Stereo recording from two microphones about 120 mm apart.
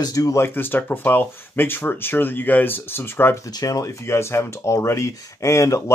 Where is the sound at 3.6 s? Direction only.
30° left (ahead or behind).